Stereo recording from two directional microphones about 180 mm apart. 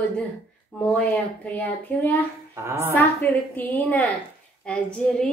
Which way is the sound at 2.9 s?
10° left (ahead or behind).